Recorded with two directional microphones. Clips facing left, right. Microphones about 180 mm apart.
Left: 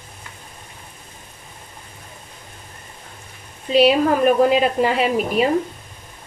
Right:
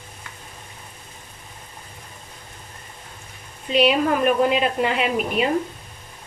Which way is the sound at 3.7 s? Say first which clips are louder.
Left 4 dB; 35° left (ahead or behind).